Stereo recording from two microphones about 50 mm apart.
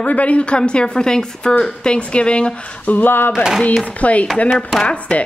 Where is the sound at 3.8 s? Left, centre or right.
Left.